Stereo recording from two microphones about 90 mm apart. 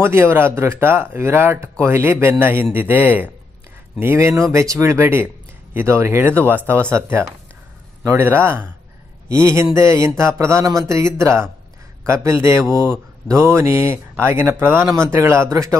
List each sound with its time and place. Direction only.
0.0 s speech: 25° right (ahead or behind)